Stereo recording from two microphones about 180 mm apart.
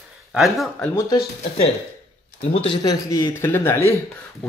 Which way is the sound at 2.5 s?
30° left (ahead or behind).